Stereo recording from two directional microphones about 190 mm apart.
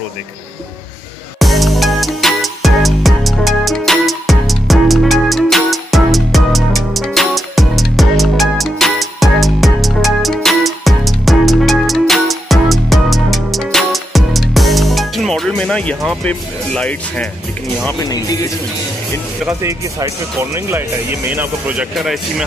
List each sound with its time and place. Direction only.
1.4 s music: centre (ahead or behind)
18.0 s speech: 20° left (ahead or behind)
19.6 s speech: 15° right (ahead or behind)